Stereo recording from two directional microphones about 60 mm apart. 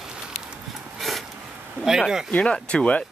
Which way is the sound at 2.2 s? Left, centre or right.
Centre.